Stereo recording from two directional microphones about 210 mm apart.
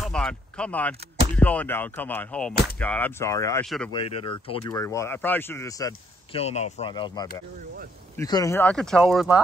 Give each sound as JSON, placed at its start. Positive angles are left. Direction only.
{"t": 0.0, "sound": "speech", "side_deg": 5}
{"t": 3.6, "sound": "speech", "side_deg": 0}
{"t": 3.9, "sound": "speech", "side_deg": 25}
{"t": 4.6, "sound": "speech", "side_deg": 15}
{"t": 6.3, "sound": "speech", "side_deg": 30}